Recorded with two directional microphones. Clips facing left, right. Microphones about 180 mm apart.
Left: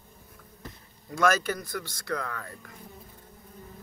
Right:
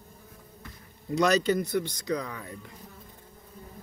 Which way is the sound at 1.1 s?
20° right (ahead or behind).